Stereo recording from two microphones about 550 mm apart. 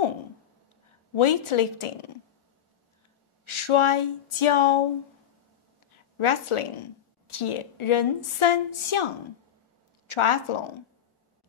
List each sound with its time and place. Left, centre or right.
1.1 s speech: left
3.4 s speech: left
5.9 s a woman's voice: left